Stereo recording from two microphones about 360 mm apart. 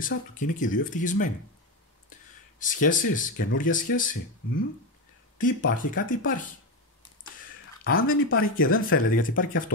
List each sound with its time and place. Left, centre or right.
0.0 s speech: left
2.6 s speech: left
5.4 s speech: left
7.8 s speech: left